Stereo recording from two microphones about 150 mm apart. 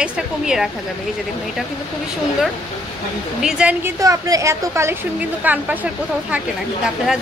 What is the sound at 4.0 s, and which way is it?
A woman's voice, 20° right (ahead or behind).